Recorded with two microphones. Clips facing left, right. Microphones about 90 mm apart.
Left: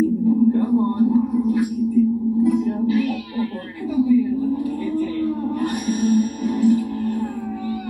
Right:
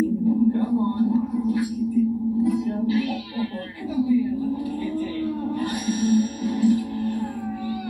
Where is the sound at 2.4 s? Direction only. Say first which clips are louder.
Left 5 dB; 50° left (ahead or behind).